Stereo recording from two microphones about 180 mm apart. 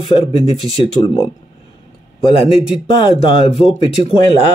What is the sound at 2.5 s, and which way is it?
Speech, 5° right (ahead or behind).